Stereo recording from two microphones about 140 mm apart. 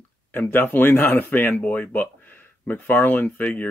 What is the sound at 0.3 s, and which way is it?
Speech, 15° left (ahead or behind).